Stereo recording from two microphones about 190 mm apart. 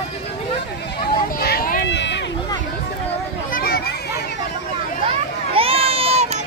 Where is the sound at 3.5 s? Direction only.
55° left (ahead or behind).